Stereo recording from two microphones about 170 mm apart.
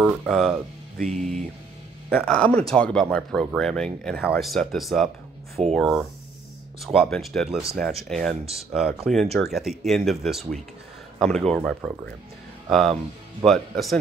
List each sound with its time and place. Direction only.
0.0 s speech: centre (ahead or behind)
0.9 s music: 45° right (ahead or behind)
2.0 s speech: 5° left (ahead or behind)